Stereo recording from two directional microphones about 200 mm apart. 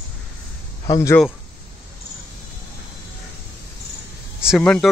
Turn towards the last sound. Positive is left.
turn(degrees=5)  # may be behind; listen again after turning